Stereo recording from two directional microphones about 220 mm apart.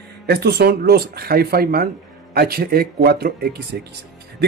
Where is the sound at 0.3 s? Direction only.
50° right (ahead or behind).